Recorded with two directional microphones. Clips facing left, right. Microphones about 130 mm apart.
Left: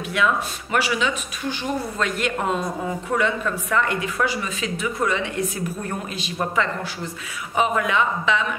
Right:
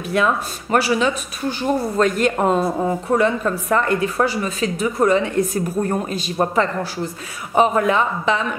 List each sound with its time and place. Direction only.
0.1 s speech: 40° right (ahead or behind)